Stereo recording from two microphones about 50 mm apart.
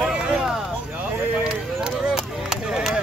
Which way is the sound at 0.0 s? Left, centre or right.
Centre.